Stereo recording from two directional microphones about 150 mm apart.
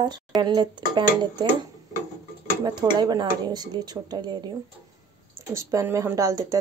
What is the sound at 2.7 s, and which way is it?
Speech, 30° right (ahead or behind).